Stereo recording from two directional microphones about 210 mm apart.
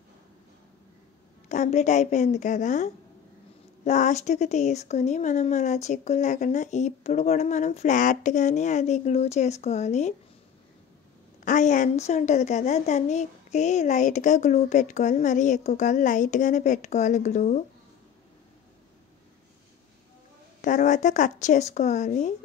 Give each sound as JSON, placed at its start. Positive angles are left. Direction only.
{"t": 1.5, "sound": "speech", "side_deg": 35}
{"t": 11.4, "sound": "speech", "side_deg": 35}
{"t": 20.6, "sound": "speech", "side_deg": 35}